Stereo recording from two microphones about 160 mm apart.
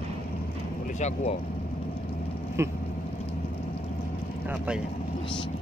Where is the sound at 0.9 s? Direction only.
45° left (ahead or behind).